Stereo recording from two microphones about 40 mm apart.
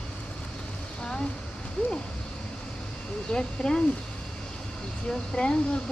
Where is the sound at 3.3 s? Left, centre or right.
Left.